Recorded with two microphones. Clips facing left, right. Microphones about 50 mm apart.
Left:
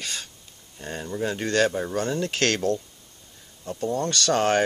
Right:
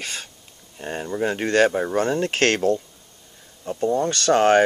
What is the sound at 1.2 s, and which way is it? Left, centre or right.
Speech, right.